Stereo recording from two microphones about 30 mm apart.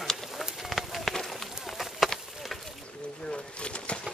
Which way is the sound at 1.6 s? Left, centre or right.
Centre.